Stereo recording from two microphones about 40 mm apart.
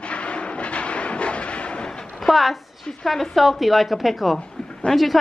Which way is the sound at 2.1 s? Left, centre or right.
Centre.